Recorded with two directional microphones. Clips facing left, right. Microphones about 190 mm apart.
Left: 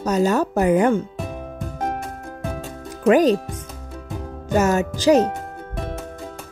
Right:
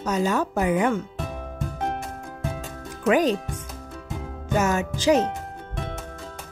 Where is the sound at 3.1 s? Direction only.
40° left (ahead or behind).